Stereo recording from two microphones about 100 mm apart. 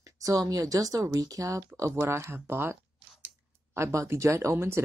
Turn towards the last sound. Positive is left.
turn(degrees=-25)  # may be behind; listen again after turning